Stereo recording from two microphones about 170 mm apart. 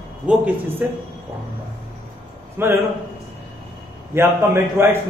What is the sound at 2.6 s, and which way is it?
Speech, 15° right (ahead or behind).